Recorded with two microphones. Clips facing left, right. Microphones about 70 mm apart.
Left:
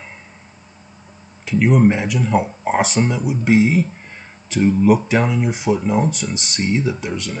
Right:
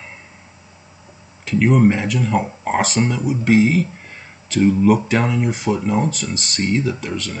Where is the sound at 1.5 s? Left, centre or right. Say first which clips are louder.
Even; centre.